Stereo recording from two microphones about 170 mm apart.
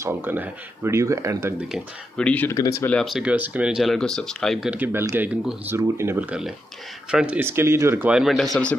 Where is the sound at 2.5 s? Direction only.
20° left (ahead or behind).